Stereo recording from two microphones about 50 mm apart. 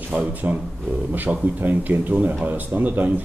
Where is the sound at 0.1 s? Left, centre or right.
Right.